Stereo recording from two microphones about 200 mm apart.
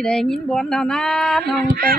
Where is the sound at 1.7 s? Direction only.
45° right (ahead or behind).